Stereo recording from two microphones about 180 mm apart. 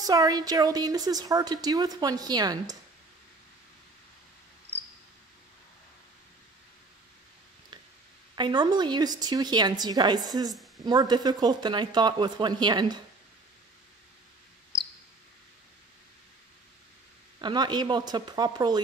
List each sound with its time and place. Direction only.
0.0 s a woman's voice: 20° right (ahead or behind)
8.4 s a woman's voice: 25° right (ahead or behind)
17.4 s a woman's voice: 25° right (ahead or behind)